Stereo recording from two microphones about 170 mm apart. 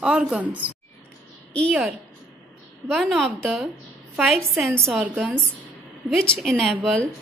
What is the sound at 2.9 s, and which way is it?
A woman's voice, centre (ahead or behind).